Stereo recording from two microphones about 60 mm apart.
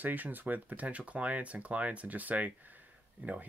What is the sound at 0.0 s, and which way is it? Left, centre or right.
Speech, right.